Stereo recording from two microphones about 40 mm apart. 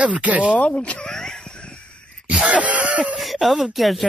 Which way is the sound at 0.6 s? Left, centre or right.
Left.